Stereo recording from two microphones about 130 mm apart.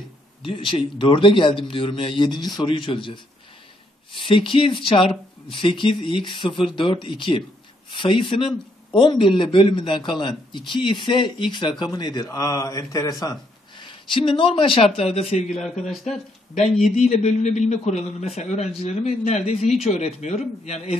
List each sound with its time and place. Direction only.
0.5 s a man's voice: 40° left (ahead or behind)
15.8 s speech: centre (ahead or behind)
16.9 s a man's voice: 60° left (ahead or behind)